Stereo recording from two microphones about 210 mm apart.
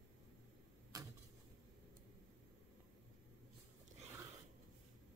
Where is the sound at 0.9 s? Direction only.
15° right (ahead or behind).